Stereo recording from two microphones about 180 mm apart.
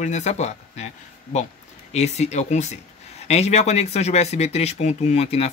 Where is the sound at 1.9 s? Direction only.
40° left (ahead or behind).